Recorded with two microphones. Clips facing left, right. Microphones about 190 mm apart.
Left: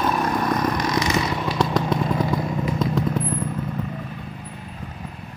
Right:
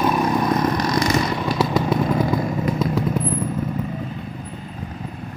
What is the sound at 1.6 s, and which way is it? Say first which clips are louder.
Vehicle: right 2 dB; 5° right (ahead or behind).